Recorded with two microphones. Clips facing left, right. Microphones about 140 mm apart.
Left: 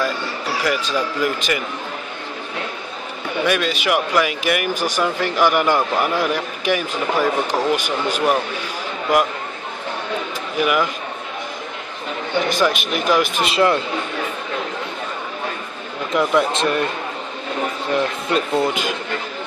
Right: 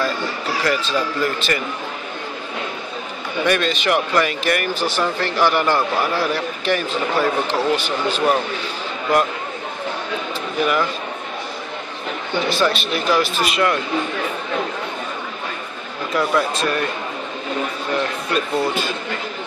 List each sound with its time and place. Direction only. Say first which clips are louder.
0.7 s speech: right 1 dB; 10° left (ahead or behind)
3.4 s speech: right 1 dB; 10° left (ahead or behind)
10.6 s speech: left 1 dB; 10° left (ahead or behind)
12.4 s speech: right 2 dB; 15° left (ahead or behind)
16.1 s speech: left 2 dB; 20° left (ahead or behind)
18.3 s speech: left 1 dB; 20° left (ahead or behind)